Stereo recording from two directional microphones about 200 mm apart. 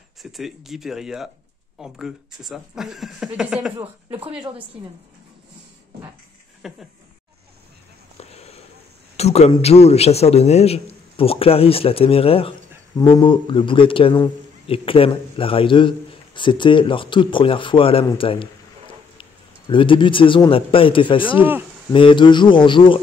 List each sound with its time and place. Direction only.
0.2 s speech: centre (ahead or behind)
3.7 s speech: 30° right (ahead or behind)
6.6 s speech: centre (ahead or behind)
8.2 s a sound: 30° left (ahead or behind)
9.1 s a man's voice: 30° left (ahead or behind)
21.3 s speech: 10° right (ahead or behind)
21.9 s a man's voice: 25° left (ahead or behind)